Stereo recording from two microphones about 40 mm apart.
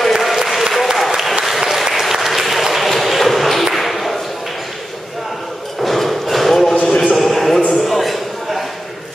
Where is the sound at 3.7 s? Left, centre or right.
Centre.